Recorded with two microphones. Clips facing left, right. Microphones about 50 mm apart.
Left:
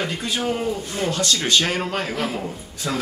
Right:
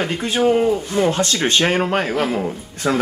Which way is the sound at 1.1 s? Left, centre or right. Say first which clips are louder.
Right 2 dB; right.